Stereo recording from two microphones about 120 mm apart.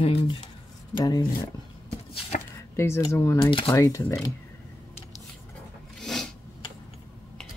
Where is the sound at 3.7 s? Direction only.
25° left (ahead or behind).